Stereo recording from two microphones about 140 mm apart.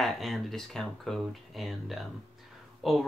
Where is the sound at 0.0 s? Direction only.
Centre (ahead or behind).